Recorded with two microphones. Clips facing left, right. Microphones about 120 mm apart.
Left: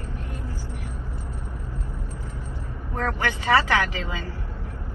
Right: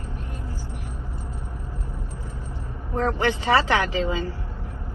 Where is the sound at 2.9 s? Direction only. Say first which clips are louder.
Right 4 dB; 20° right (ahead or behind).